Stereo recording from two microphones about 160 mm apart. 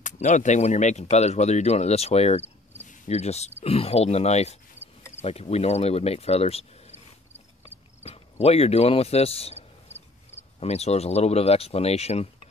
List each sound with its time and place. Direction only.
0.0 s speech: 50° left (ahead or behind)
8.0 s speech: 40° left (ahead or behind)